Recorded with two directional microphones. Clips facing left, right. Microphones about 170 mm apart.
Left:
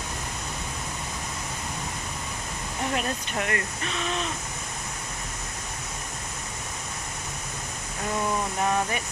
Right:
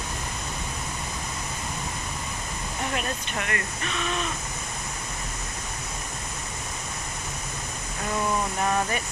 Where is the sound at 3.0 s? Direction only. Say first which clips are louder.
Left 2 dB; 35° left (ahead or behind).